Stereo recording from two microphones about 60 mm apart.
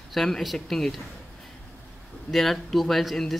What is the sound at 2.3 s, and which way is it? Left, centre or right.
Speech, centre.